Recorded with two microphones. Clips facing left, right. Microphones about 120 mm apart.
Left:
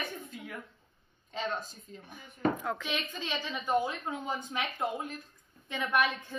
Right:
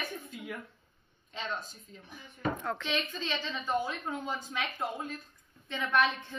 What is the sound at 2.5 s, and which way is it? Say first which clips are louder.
A woman's voice: right 1 dB; 10° left (ahead or behind).